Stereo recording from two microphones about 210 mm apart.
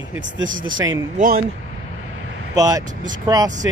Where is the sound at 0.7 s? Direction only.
15° right (ahead or behind).